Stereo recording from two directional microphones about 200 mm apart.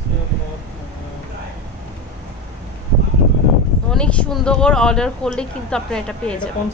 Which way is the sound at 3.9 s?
5° left (ahead or behind).